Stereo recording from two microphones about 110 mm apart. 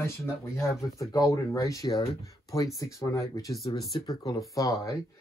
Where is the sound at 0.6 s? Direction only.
30° left (ahead or behind).